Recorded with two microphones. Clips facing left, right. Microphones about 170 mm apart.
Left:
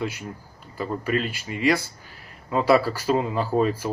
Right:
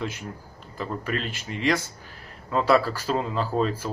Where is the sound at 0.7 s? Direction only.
5° left (ahead or behind).